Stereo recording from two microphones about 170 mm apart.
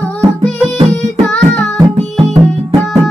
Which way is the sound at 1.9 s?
40° right (ahead or behind).